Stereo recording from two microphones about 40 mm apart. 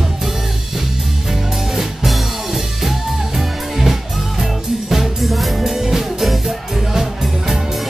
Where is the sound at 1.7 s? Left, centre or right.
Centre.